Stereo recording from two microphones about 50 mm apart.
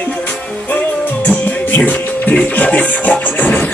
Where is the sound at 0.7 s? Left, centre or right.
Left.